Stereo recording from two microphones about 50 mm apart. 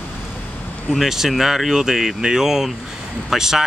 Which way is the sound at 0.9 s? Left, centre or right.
Centre.